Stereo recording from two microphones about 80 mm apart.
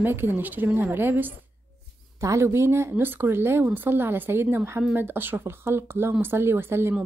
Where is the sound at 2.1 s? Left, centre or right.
Right.